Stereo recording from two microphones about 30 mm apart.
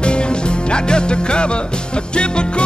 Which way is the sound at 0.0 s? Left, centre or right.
Left.